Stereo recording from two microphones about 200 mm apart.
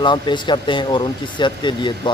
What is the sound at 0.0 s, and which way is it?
Speech, 25° left (ahead or behind).